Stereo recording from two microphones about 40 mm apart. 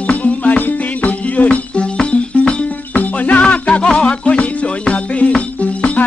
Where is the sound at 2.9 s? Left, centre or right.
Left.